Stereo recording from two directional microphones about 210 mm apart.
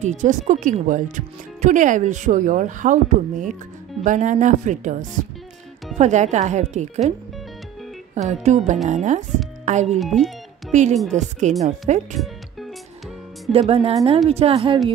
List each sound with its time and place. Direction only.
0.0 s speech: 35° right (ahead or behind)
9.9 s speech: centre (ahead or behind)
10.7 s speech: 35° right (ahead or behind)
13.5 s speech: 30° right (ahead or behind)